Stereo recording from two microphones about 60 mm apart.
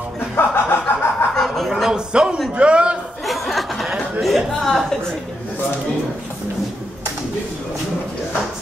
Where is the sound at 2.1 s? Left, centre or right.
Centre.